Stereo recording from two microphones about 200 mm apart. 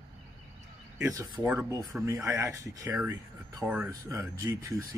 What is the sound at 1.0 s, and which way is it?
Speech, 15° right (ahead or behind).